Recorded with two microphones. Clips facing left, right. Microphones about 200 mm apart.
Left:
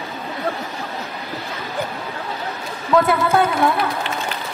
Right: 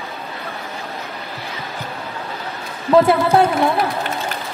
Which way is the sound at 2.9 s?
30° right (ahead or behind).